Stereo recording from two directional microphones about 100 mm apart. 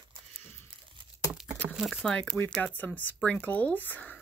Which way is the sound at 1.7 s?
5° right (ahead or behind).